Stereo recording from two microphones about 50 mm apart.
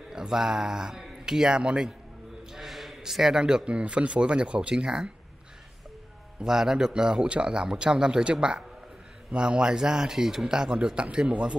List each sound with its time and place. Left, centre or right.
0.1 s a man's voice: centre
2.5 s a man's voice: centre
6.4 s speech: centre